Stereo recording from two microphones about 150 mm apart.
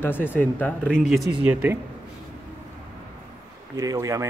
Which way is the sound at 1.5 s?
10° right (ahead or behind).